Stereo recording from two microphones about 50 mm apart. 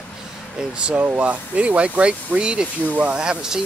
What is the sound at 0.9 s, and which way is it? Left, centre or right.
Speech, right.